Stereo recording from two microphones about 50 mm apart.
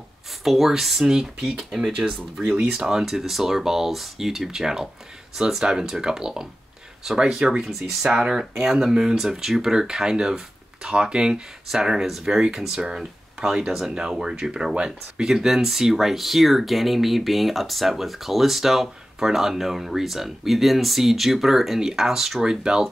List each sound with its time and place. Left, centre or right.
0.4 s speech: centre